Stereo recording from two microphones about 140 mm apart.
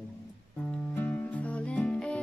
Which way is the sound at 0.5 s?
10° left (ahead or behind).